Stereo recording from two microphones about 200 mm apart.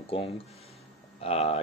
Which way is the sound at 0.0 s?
30° left (ahead or behind).